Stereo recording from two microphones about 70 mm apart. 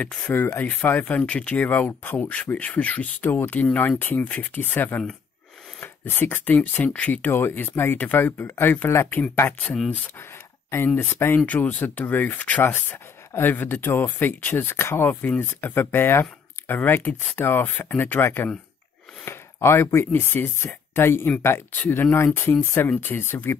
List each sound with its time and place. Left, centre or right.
0.0 s speech: left
10.7 s speech: left
11.4 s speech: left
12.6 s speech: left